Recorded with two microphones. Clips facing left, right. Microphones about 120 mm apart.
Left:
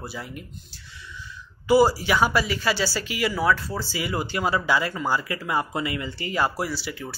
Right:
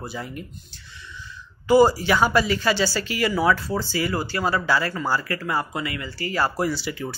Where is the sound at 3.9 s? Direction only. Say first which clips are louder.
Even; 15° left (ahead or behind).